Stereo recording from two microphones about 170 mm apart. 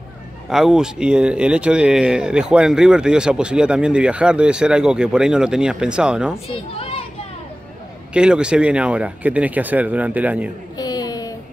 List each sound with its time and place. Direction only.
0.5 s speech: 5° right (ahead or behind)
6.8 s children playing: 35° left (ahead or behind)
8.1 s speech: 5° right (ahead or behind)
10.8 s a sound: 20° left (ahead or behind)